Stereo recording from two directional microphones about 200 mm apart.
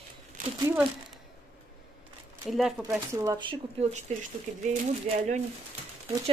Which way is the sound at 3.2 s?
20° right (ahead or behind).